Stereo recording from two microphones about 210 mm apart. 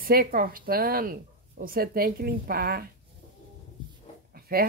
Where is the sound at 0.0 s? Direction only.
45° right (ahead or behind).